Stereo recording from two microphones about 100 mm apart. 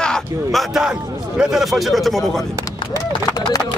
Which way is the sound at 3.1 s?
45° left (ahead or behind).